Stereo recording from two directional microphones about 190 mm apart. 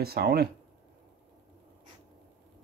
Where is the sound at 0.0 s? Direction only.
55° right (ahead or behind).